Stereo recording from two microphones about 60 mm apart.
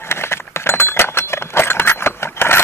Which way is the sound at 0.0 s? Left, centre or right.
Left.